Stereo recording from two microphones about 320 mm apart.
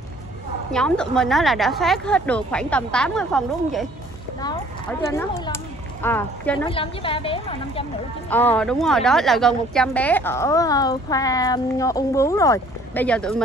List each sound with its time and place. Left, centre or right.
0.7 s a woman's voice: centre
5.0 s a woman's voice: centre
8.3 s a woman's voice: centre